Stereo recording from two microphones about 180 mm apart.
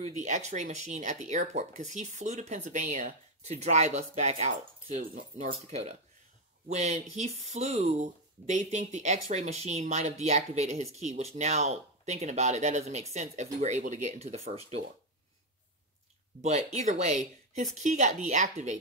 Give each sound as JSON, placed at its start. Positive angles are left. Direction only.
{"t": 0.0, "sound": "speech", "side_deg": -40}
{"t": 16.4, "sound": "speech", "side_deg": -35}